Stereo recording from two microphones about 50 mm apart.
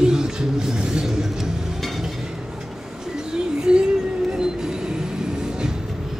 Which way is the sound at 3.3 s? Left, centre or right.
Centre.